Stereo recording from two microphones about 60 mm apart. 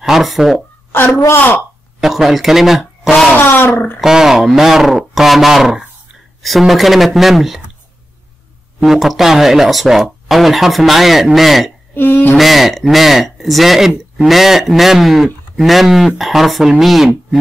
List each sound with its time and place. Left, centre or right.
0.0 s speech: centre
1.1 s a woman's voice: left
2.0 s speech: centre
3.3 s speech: left
4.0 s speech: centre
8.7 s speech: centre
11.9 s speech: left
12.4 s speech: centre